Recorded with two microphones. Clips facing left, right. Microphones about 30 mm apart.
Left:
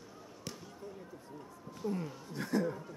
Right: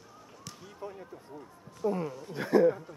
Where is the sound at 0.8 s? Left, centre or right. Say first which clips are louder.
Right 7 dB; right.